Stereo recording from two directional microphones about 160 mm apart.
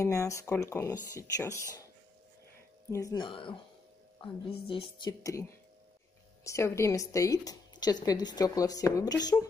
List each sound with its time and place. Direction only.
0.0 s a woman's voice: 20° left (ahead or behind)
2.9 s a woman's voice: 20° left (ahead or behind)
5.0 s a woman's voice: 20° left (ahead or behind)